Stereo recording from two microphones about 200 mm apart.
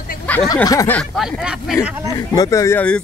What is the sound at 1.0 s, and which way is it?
Speech, centre (ahead or behind).